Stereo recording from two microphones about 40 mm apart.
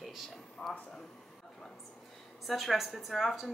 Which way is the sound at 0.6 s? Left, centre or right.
Centre.